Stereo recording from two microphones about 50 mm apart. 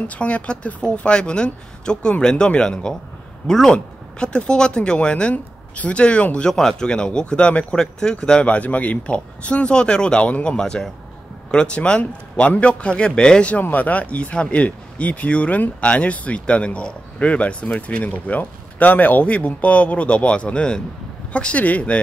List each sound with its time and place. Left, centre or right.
0.1 s speech: left; by 3.7 s centre
3.7 s speech: left
6.5 s speech: centre
13.5 s speech: left